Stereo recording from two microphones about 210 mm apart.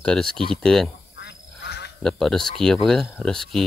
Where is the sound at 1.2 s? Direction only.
50° left (ahead or behind).